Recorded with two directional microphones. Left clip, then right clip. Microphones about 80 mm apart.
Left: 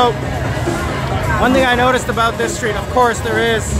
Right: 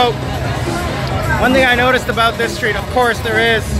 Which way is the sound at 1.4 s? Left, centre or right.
Left.